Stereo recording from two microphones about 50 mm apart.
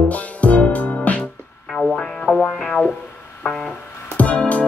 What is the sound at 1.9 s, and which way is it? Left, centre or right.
Music, centre.